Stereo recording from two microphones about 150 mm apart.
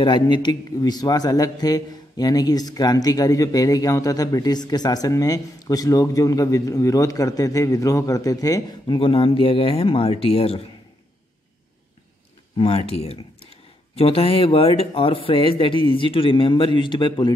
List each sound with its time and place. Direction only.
0.0 s a man's voice: 30° left (ahead or behind)
8.9 s speech: 35° left (ahead or behind)
12.5 s speech: 40° left (ahead or behind)